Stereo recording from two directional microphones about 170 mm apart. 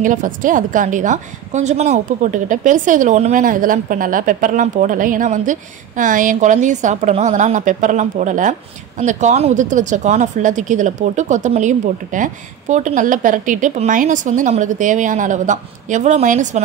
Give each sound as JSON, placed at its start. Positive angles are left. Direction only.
{"t": 0.0, "sound": "a woman's voice", "side_deg": -50}